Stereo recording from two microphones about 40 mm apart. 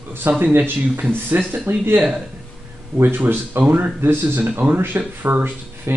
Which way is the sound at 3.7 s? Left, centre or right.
Right.